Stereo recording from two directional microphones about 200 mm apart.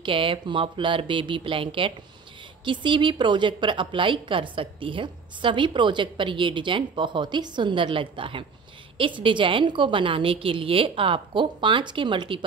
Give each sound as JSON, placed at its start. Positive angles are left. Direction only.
{"t": 0.0, "sound": "a woman's voice", "side_deg": -25}